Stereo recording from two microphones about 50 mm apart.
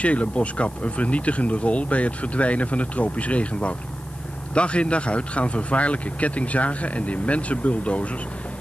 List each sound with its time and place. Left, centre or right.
0.0 s speech: left